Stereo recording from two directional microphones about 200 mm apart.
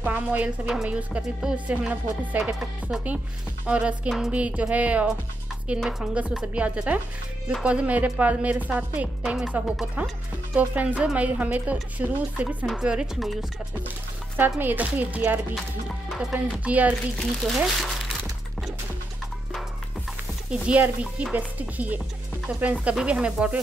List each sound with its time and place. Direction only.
0.0 s a woman's voice: 10° right (ahead or behind)
20.4 s a woman's voice: 5° right (ahead or behind)